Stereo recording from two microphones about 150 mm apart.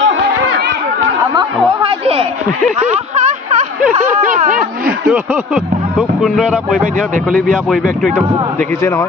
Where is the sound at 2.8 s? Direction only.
50° right (ahead or behind).